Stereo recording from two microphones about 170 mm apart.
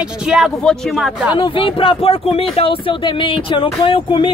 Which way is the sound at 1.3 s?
30° left (ahead or behind).